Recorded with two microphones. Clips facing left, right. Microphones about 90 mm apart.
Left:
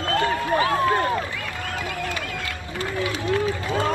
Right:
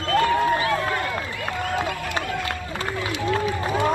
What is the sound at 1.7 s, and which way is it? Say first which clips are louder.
Run: right 1 dB; 30° right (ahead or behind).